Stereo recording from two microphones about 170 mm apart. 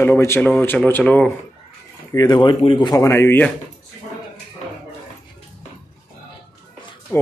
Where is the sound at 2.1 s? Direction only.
25° left (ahead or behind).